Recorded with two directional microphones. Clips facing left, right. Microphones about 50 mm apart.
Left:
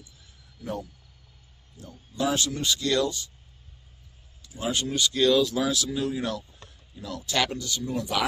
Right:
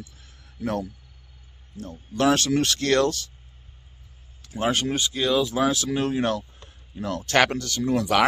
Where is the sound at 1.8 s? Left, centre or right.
Right.